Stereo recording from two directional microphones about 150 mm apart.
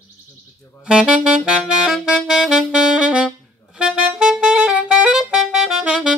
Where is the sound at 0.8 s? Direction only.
5° right (ahead or behind).